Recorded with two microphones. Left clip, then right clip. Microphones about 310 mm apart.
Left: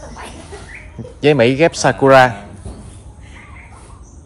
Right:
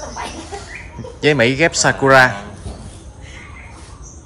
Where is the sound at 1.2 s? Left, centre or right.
Centre.